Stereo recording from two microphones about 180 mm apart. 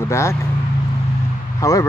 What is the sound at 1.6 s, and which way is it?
Speech, 15° left (ahead or behind).